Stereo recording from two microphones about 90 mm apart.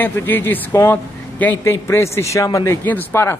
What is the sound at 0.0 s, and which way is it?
A man's voice, 20° left (ahead or behind).